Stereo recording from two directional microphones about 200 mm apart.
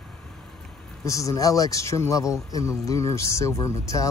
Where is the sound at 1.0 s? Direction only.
15° left (ahead or behind).